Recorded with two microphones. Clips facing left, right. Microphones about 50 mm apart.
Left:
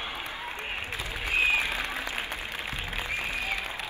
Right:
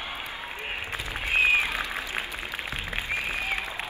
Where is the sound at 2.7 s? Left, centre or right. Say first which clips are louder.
Right 3 dB; right.